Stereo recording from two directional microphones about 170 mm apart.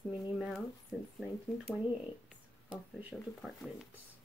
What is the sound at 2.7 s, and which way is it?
Speech, 10° right (ahead or behind).